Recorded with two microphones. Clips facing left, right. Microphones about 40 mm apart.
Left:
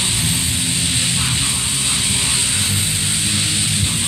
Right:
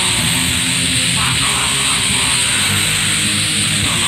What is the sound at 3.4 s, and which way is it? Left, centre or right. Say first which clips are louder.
Music: right 3 dB; right.